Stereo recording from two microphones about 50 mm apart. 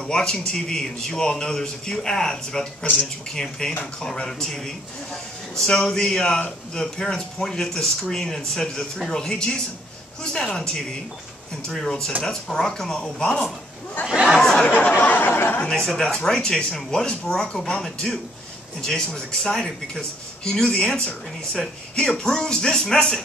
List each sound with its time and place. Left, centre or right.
0.0 s a man's voice: centre
14.0 s chatter: centre
14.4 s chatter: centre
15.0 s a sound: left
15.7 s speech: centre